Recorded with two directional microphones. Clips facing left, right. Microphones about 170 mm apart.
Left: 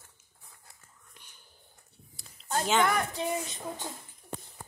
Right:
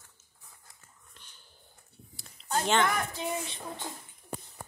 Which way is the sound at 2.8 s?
30° left (ahead or behind).